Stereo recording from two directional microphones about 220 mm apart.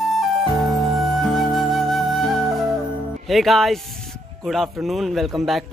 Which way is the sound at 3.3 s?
Centre (ahead or behind).